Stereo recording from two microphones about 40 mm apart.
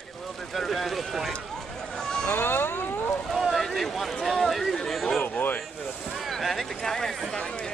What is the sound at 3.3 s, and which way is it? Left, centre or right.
Boat, centre.